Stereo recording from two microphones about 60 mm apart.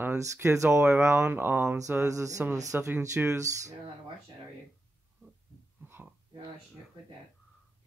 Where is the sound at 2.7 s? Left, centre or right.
Right.